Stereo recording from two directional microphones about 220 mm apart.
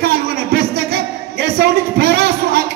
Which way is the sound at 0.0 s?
50° right (ahead or behind).